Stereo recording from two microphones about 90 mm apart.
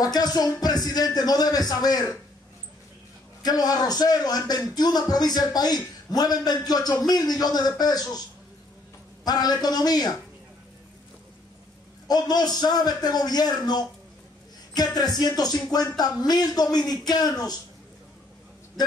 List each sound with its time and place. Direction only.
0.0 s speech: 45° left (ahead or behind)
3.4 s speech: 45° left (ahead or behind)
9.2 s speech: 50° left (ahead or behind)
12.1 s speech: 50° left (ahead or behind)
15.0 s speech: 45° left (ahead or behind)